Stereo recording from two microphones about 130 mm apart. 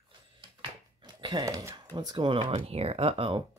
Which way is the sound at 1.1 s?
35° right (ahead or behind).